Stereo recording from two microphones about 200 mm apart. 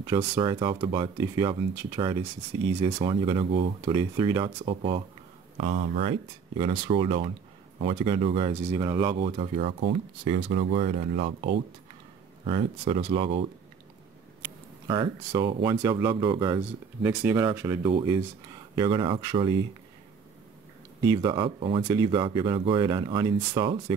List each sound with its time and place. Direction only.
0.0 s speech: 10° right (ahead or behind)
0.4 s speech: 25° right (ahead or behind)
14.9 s speech: 25° right (ahead or behind)
17.0 s speech: 10° right (ahead or behind)
18.8 s speech: 25° right (ahead or behind)
21.0 s speech: 20° right (ahead or behind)